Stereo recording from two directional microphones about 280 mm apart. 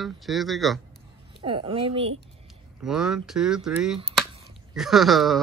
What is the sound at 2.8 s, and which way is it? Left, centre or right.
Speech, centre.